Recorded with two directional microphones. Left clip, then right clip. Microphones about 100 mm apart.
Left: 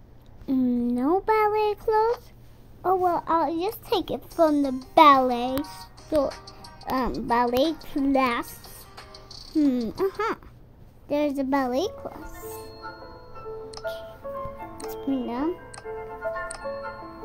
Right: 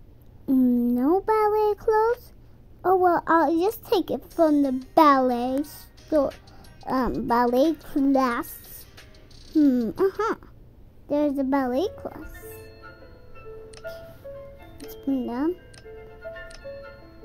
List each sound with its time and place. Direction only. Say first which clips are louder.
0.5 s a child's voice: right 3 dB; 15° right (ahead or behind)
8.2 s a child's voice: even; 5° left (ahead or behind)
8.9 s cricket: left 7 dB; 10° right (ahead or behind)
11.1 s a woman's voice: right 1 dB; 10° left (ahead or behind)
12.5 s music: left 6 dB; 10° right (ahead or behind)
15.2 s music: right 1 dB; centre (ahead or behind)
15.9 s music: left 9 dB; 25° right (ahead or behind)
16.3 s music: left 7 dB; 15° right (ahead or behind)